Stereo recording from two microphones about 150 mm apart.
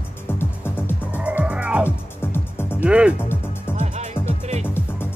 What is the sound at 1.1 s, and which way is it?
Music, 10° right (ahead or behind).